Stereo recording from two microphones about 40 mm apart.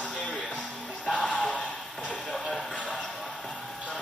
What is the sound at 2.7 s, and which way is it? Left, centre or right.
Basketball bounce, left.